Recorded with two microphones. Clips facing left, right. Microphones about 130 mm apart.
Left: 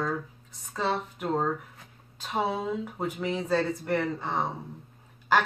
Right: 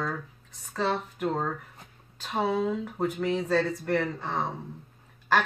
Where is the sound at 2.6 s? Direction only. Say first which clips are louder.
Right 3 dB; 10° left (ahead or behind).